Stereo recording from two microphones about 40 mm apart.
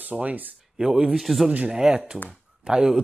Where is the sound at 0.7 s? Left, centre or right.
Centre.